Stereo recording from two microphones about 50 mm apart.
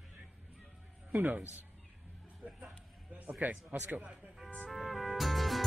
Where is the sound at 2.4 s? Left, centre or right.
Right.